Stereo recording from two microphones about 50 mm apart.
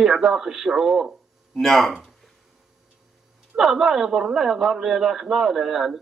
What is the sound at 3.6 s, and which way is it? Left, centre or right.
A man's voice, centre.